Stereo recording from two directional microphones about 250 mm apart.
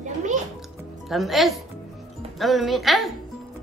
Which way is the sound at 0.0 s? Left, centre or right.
Right.